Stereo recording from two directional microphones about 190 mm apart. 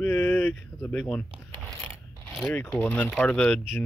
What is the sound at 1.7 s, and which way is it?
Mechanisms, centre (ahead or behind).